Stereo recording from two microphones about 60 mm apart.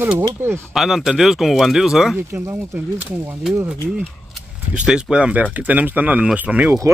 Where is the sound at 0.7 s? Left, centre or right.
Centre.